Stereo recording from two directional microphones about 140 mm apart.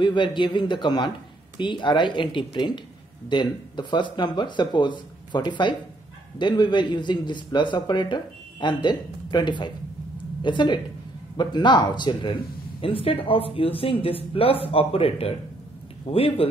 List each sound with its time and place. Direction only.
0.0 s a man's voice: 35° left (ahead or behind)